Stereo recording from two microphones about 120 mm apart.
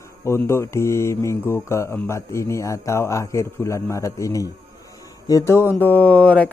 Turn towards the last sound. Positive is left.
turn(degrees=10)  # may be behind; listen again after turning